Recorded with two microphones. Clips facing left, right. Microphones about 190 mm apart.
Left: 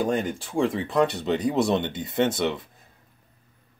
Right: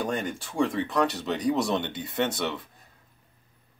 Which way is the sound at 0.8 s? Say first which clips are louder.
Left 3 dB; 20° left (ahead or behind).